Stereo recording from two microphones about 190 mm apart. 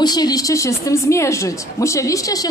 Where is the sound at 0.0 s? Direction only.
20° left (ahead or behind).